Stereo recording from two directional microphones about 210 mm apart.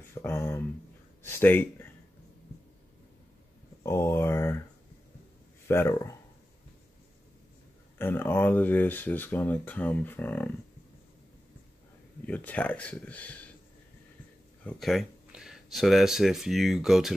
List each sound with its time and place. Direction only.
0.1 s a sound: 10° left (ahead or behind)
1.2 s speech: 10° left (ahead or behind)
3.8 s a sound: 10° left (ahead or behind)
5.7 s speech: 15° left (ahead or behind)
8.0 s speech: 10° left (ahead or behind)
12.3 s speech: 5° left (ahead or behind)
14.6 s speech: 5° left (ahead or behind)